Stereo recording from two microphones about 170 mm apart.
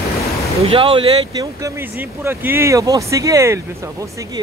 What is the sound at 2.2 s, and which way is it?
Speech, 10° right (ahead or behind).